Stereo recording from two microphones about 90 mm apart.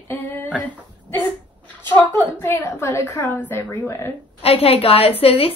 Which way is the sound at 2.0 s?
20° left (ahead or behind).